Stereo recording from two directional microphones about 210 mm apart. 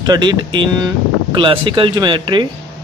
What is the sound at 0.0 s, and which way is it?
Speech, 20° right (ahead or behind).